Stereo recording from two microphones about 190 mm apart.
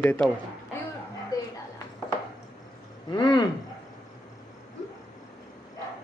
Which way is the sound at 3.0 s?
20° left (ahead or behind).